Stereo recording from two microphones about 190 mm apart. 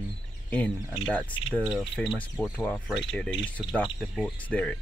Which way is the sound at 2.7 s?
Centre (ahead or behind).